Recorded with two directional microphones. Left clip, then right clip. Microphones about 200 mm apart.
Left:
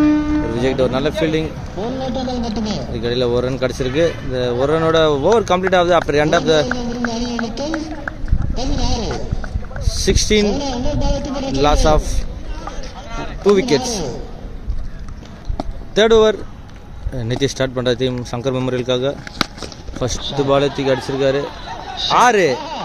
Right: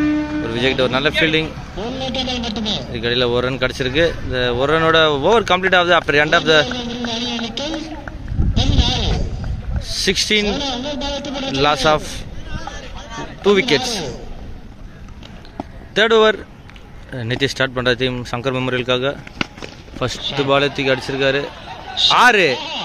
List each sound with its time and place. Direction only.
0.5 s speech: centre (ahead or behind)
2.0 s a man's voice: 10° right (ahead or behind)
2.9 s speech: 5° left (ahead or behind)
6.6 s a sound: 20° right (ahead or behind)
10.0 s speech: centre (ahead or behind)
10.4 s a sound: 25° right (ahead or behind)
11.6 s speech: centre (ahead or behind)
13.4 s a man's voice: centre (ahead or behind)
13.8 s a man's voice: 20° right (ahead or behind)
15.5 s a sound: 5° left (ahead or behind)
17.1 s speech: 5° left (ahead or behind)
20.3 s speech: 5° left (ahead or behind)
22.6 s speech: 30° left (ahead or behind)